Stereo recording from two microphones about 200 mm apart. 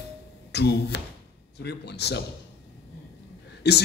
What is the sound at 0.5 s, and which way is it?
A man's voice, 55° left (ahead or behind).